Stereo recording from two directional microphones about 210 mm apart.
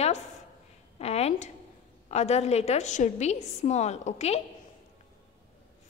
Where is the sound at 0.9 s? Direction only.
30° left (ahead or behind).